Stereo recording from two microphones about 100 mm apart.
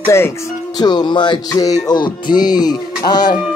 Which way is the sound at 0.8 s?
45° left (ahead or behind).